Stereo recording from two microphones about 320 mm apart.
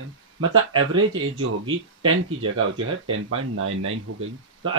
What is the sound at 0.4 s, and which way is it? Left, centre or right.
Speech, right.